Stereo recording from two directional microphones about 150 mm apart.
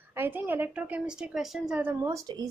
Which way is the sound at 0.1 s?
15° right (ahead or behind).